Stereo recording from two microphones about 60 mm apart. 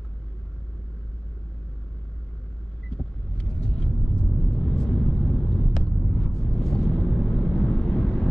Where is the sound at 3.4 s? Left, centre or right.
Centre.